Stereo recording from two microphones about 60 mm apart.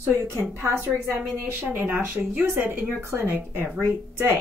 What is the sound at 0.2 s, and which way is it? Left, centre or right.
A woman's voice, right.